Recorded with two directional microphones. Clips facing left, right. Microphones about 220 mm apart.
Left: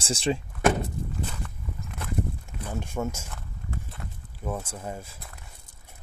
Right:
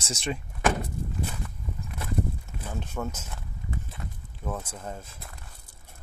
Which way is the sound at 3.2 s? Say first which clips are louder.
Right 1 dB; 5° right (ahead or behind).